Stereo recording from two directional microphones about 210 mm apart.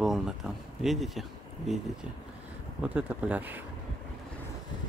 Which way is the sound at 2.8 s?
5° right (ahead or behind).